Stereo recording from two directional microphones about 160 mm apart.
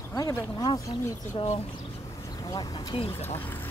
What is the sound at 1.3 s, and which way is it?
Speech, 35° left (ahead or behind).